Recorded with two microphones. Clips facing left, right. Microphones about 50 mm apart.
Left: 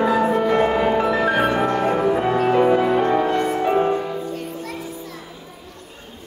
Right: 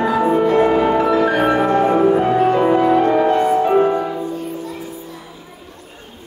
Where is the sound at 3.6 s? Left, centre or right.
Centre.